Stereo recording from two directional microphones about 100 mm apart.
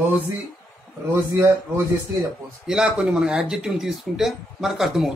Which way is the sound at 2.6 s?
5° right (ahead or behind).